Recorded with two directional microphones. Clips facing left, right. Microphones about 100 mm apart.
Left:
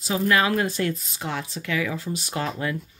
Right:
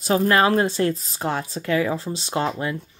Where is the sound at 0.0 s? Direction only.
45° right (ahead or behind).